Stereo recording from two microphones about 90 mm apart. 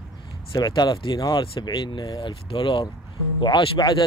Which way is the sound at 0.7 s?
60° left (ahead or behind).